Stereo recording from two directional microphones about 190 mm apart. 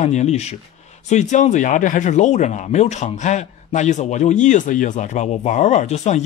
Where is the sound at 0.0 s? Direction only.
35° left (ahead or behind).